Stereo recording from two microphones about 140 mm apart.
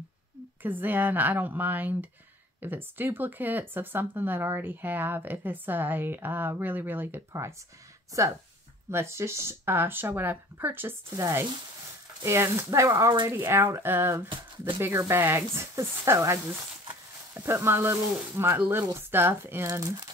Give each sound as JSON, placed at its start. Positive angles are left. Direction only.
{"t": 0.6, "sound": "speech", "side_deg": -15}